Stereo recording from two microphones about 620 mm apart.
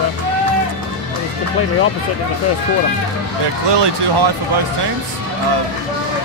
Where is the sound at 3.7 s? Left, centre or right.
Right.